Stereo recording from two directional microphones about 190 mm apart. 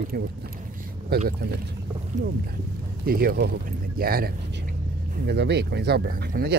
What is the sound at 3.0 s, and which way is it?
Speech, 50° right (ahead or behind).